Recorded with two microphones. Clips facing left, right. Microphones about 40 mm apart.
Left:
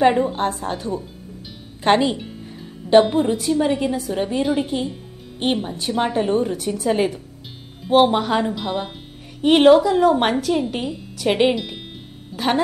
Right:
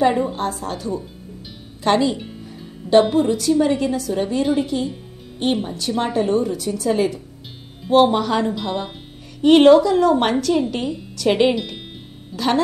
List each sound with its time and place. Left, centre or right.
0.4 s a woman's voice: left
2.9 s a woman's voice: centre
4.7 s a woman's voice: left
6.4 s a woman's voice: left
7.9 s a woman's voice: centre
8.5 s a woman's voice: centre
12.3 s speech: centre